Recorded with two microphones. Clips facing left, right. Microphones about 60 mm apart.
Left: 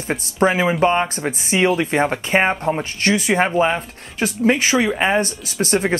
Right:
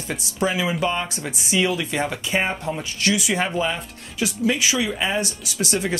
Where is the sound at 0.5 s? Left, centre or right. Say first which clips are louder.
Left 6 dB; left.